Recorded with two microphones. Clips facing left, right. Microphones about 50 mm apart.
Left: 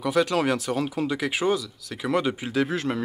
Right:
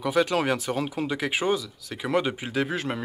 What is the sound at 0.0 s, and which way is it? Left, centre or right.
Speech, right.